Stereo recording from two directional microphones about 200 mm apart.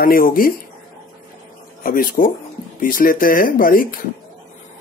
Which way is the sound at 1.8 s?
45° left (ahead or behind).